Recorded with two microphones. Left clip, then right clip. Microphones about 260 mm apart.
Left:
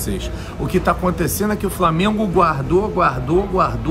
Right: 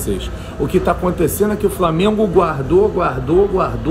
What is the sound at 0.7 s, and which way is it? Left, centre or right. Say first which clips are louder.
A man's voice: right 1 dB; left.